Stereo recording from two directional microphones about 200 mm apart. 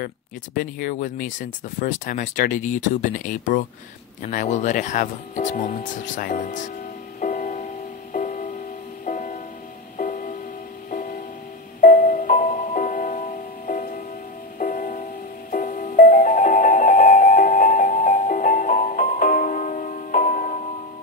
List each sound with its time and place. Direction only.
0.6 s speech: 40° left (ahead or behind)
7.2 s music: 40° left (ahead or behind)